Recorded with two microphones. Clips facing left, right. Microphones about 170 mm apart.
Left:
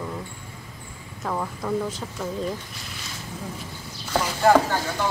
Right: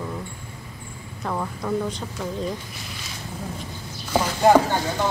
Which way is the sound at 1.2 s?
Centre (ahead or behind).